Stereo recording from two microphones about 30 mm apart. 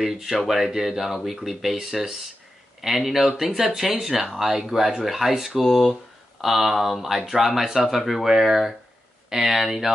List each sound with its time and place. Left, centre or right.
0.7 s speech: centre
5.6 s speech: centre
9.3 s speech: centre